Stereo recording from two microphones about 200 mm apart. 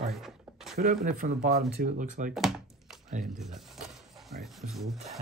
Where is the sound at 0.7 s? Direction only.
50° right (ahead or behind).